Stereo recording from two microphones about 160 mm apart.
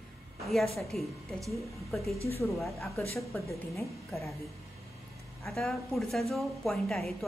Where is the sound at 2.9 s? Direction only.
15° left (ahead or behind).